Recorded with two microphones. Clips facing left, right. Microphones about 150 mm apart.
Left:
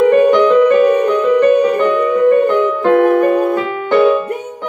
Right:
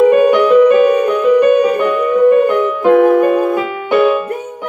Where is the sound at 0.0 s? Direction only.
10° right (ahead or behind).